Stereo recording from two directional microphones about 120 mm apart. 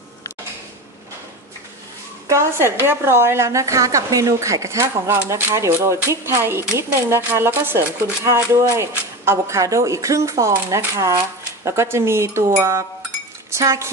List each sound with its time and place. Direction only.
2.2 s a woman's voice: 20° right (ahead or behind)